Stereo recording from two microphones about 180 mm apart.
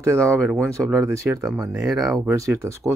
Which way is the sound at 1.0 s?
15° right (ahead or behind).